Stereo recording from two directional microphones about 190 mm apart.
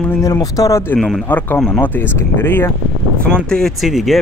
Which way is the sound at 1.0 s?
Centre (ahead or behind).